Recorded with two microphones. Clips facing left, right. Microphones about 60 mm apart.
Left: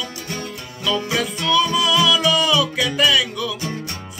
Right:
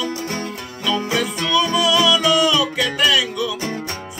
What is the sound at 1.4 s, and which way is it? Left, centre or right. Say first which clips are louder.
Music: even; centre.